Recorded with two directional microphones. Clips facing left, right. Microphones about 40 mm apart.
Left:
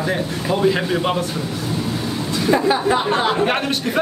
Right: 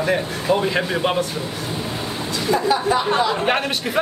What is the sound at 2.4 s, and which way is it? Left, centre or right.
Speech, left.